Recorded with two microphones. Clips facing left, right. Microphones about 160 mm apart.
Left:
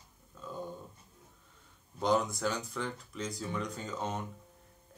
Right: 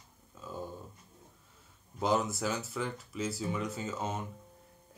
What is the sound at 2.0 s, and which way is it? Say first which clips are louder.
Speech: left 1 dB; 5° right (ahead or behind).